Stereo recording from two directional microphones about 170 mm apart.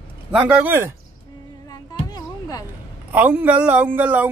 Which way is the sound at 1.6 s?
20° left (ahead or behind).